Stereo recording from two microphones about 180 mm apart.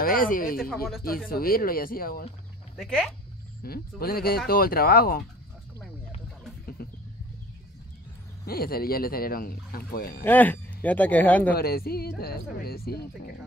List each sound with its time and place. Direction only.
0.0 s speech: 50° left (ahead or behind)
2.8 s speech: centre (ahead or behind)
3.6 s speech: 55° left (ahead or behind)
6.8 s vehicle: 55° left (ahead or behind)
8.5 s speech: 55° left (ahead or behind)
10.2 s speech: 10° left (ahead or behind)
11.5 s speech: 60° left (ahead or behind)